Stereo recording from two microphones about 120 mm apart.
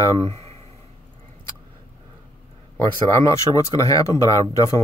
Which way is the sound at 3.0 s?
30° left (ahead or behind).